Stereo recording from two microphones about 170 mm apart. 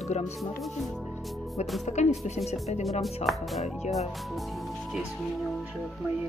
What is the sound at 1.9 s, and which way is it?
Speech, 45° left (ahead or behind).